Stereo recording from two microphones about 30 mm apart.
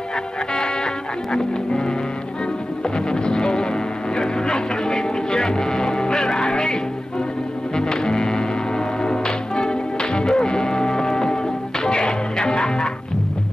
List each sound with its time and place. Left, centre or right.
1.3 s music: left
3.1 s music: left